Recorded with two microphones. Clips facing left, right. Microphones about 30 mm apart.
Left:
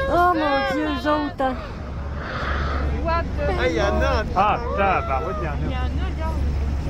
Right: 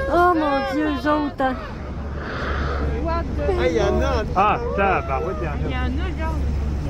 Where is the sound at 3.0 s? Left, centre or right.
Left.